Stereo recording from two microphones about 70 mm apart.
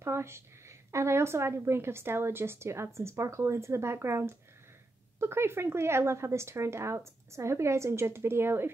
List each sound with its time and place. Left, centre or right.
0.0 s a woman's voice: right